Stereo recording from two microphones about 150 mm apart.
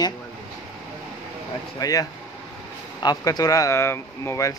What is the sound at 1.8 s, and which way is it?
Speech, 25° left (ahead or behind).